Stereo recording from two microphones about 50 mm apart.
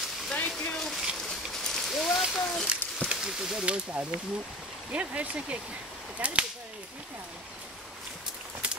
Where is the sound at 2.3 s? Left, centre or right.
Centre.